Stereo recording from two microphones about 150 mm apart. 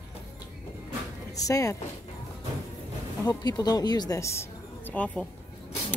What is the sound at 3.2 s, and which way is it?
Speech, 25° left (ahead or behind).